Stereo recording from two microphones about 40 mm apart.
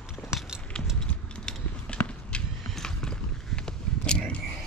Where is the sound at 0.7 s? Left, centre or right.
Left.